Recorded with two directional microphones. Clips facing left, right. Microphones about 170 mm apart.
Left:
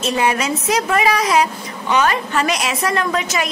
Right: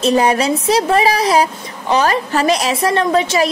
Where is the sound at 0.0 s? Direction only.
35° right (ahead or behind).